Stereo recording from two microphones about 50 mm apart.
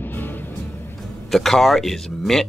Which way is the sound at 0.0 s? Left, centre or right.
Left.